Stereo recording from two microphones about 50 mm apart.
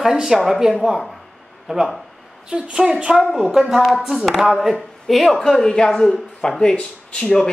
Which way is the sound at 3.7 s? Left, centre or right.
Centre.